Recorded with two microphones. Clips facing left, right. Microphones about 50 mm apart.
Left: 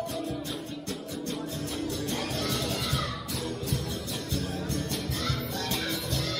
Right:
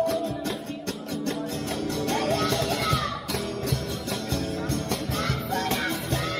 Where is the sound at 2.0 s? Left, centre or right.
Right.